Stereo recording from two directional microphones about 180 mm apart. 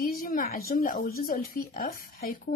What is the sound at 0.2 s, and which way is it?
A woman's voice, 50° left (ahead or behind).